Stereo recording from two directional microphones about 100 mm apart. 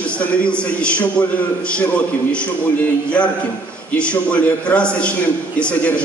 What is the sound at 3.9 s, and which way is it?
A man's voice, 10° left (ahead or behind).